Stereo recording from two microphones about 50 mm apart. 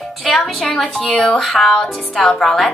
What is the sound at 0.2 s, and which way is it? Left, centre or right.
Speech, centre.